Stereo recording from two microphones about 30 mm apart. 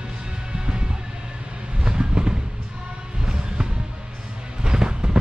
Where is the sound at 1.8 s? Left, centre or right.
Right.